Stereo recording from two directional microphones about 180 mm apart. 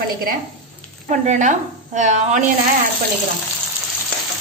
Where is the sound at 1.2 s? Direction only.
40° right (ahead or behind).